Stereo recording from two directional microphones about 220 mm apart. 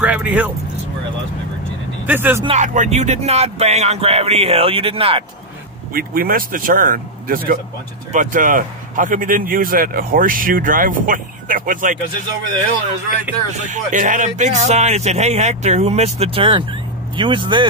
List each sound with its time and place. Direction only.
0.0 s speech: 5° right (ahead or behind)
2.0 s speech: 10° right (ahead or behind)
2.4 s speech: 35° right (ahead or behind)
5.9 s speech: 40° right (ahead or behind)
13.7 s speech: 35° right (ahead or behind)